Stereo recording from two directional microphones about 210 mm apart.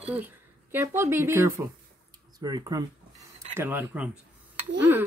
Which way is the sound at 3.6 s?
10° right (ahead or behind).